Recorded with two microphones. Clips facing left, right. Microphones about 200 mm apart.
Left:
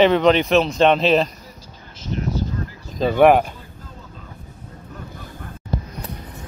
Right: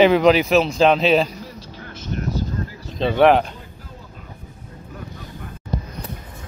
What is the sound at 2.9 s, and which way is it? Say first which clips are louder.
Speech: left 1 dB; 10° left (ahead or behind).